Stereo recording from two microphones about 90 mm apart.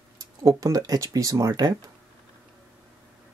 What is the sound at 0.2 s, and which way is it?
Speech, 45° right (ahead or behind).